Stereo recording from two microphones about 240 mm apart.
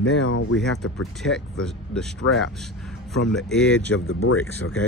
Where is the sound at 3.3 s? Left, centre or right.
Centre.